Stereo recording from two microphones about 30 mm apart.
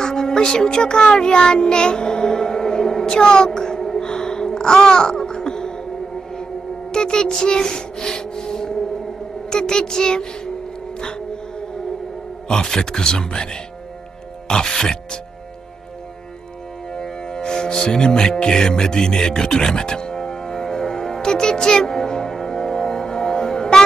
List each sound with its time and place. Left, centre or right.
0.0 s music: left
6.9 s speech: left
7.4 s a sound: left
9.5 s speech: left
11.0 s music: left
12.4 s speech: left
16.9 s music: left